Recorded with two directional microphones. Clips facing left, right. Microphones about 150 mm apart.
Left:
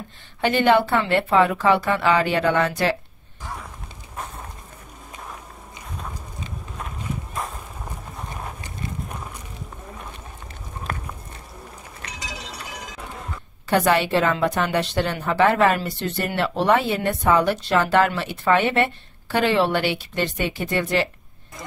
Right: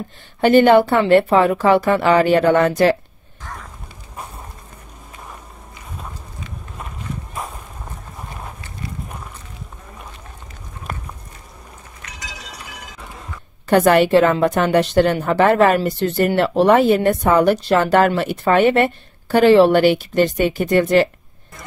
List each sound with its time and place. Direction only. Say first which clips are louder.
0.4 s a woman's voice: right 7 dB; 40° right (ahead or behind)
7.3 s a sound: right 1 dB; 5° right (ahead or behind)
13.7 s a woman's voice: right 6 dB; 50° right (ahead or behind)